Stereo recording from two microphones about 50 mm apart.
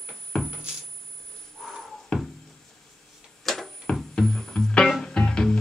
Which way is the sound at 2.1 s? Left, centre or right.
Centre.